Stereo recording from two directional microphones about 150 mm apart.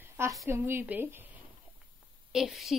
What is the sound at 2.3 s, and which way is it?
Speech, centre (ahead or behind).